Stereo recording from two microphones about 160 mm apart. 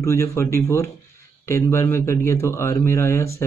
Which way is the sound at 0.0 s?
20° left (ahead or behind).